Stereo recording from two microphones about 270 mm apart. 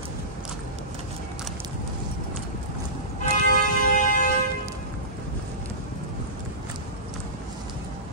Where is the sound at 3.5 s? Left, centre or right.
Left.